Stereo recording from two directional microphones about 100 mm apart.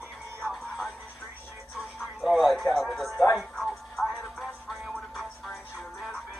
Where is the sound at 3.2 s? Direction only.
Centre (ahead or behind).